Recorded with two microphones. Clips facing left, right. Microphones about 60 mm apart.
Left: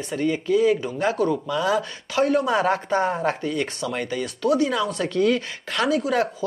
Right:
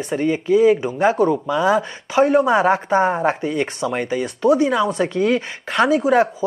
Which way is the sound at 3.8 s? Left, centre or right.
Centre.